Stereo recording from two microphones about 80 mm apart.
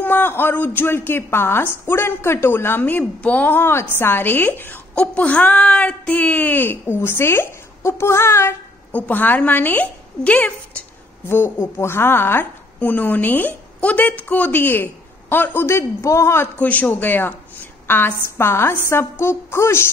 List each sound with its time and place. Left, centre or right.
0.0 s a woman's voice: left
4.9 s a woman's voice: centre; by 8.5 s left
8.9 s a woman's voice: left
11.2 s a woman's voice: left
16.5 s a woman's voice: centre; by 19.9 s left